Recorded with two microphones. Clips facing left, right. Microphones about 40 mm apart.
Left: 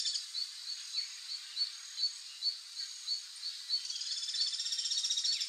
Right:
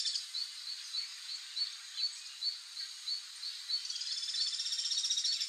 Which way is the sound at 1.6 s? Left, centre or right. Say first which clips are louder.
Left 1 dB; right.